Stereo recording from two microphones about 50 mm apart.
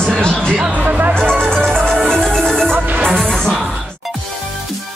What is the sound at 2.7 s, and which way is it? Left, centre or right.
Music, right.